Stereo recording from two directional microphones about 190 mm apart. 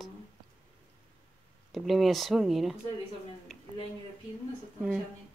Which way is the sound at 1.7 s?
Centre (ahead or behind).